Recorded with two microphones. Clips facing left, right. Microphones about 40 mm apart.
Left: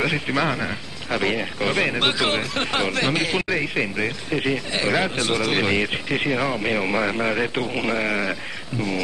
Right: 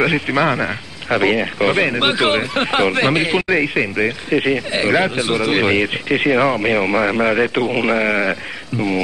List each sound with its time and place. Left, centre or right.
0.0 s speech: centre